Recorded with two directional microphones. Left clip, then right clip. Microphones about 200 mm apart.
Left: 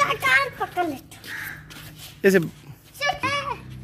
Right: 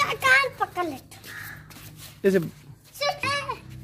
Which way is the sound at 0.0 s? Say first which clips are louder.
Even; centre (ahead or behind).